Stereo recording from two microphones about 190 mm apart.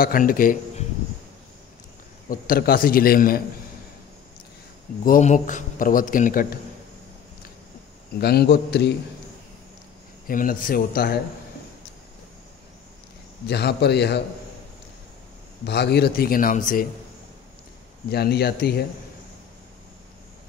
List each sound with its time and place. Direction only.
0.0 s a man's voice: 50° left (ahead or behind)
2.2 s a man's voice: 50° left (ahead or behind)
5.0 s a man's voice: 45° left (ahead or behind)
8.2 s a man's voice: 60° left (ahead or behind)
10.2 s a man's voice: 45° left (ahead or behind)
13.5 s a man's voice: 60° left (ahead or behind)
15.6 s a man's voice: 60° left (ahead or behind); by 16.8 s 45° left (ahead or behind)
18.1 s a man's voice: 55° left (ahead or behind)